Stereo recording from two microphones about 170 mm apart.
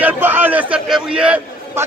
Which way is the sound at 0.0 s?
10° right (ahead or behind).